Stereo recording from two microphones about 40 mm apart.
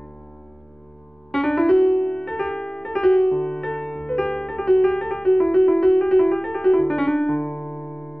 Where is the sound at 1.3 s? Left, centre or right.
Centre.